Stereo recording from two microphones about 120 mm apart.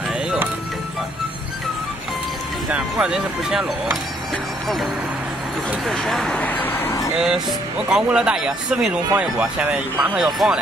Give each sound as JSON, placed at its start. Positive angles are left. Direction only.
{"t": 2.7, "sound": "speech", "side_deg": -5}
{"t": 5.9, "sound": "speech", "side_deg": 0}
{"t": 7.2, "sound": "speech", "side_deg": -5}
{"t": 10.2, "sound": "speech", "side_deg": -5}